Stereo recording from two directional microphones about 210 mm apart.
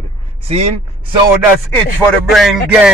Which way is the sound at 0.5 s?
30° right (ahead or behind).